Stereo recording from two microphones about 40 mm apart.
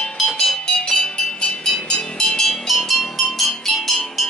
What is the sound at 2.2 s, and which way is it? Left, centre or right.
Cowbell, centre.